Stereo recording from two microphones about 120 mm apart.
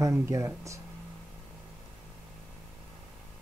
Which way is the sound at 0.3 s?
25° right (ahead or behind).